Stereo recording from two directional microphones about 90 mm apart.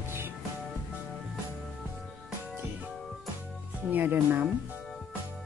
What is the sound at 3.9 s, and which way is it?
Speech, 20° right (ahead or behind).